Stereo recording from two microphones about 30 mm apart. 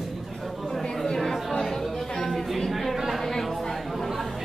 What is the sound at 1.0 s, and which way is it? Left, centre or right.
Chatter, centre.